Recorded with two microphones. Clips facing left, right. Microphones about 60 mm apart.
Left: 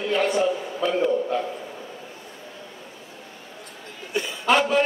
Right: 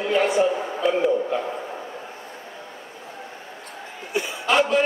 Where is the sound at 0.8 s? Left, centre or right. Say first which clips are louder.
Right 1 dB; centre.